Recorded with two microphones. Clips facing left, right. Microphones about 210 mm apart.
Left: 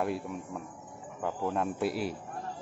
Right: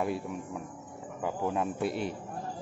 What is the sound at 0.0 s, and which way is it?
A man's voice, centre (ahead or behind).